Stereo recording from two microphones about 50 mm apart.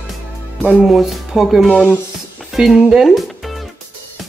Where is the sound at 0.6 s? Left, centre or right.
Right.